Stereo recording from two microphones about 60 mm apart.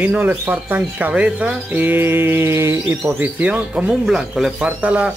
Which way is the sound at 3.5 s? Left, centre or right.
Centre.